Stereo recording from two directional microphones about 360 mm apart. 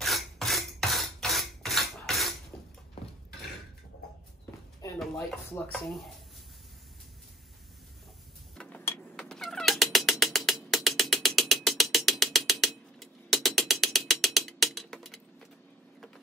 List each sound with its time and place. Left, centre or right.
0.0 s filing: centre
4.8 s speech: centre
8.5 s cat: centre